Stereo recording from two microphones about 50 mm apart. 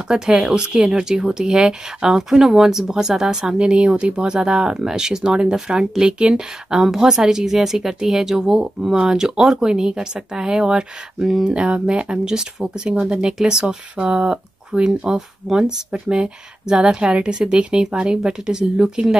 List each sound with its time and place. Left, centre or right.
0.1 s speech: centre
11.4 s speech: centre